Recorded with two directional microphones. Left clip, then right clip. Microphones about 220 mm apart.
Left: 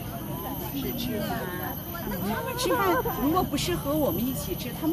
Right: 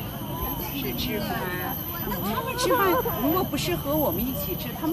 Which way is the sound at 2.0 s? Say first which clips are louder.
Right 2 dB; 45° left (ahead or behind).